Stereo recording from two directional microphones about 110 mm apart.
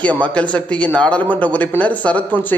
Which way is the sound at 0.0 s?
10° left (ahead or behind).